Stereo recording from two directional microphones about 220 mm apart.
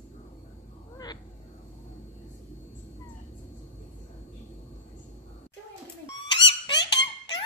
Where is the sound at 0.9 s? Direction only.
20° left (ahead or behind).